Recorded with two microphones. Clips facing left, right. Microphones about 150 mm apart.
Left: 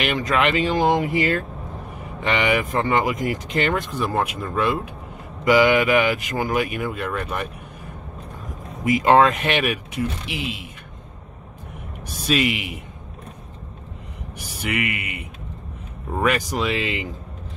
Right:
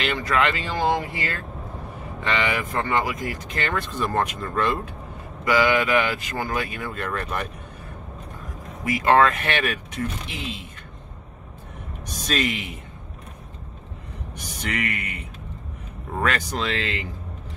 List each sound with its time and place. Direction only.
0.0 s speech: 20° left (ahead or behind)
8.8 s speech: 20° left (ahead or behind)
12.3 s speech: 10° left (ahead or behind)
14.6 s speech: 10° left (ahead or behind)